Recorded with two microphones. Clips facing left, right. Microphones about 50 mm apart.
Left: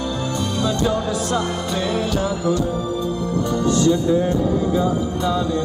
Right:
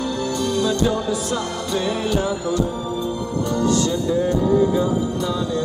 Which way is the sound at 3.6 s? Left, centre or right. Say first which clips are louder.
Left 3 dB; left.